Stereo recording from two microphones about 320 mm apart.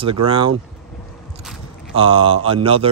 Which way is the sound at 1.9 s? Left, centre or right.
Centre.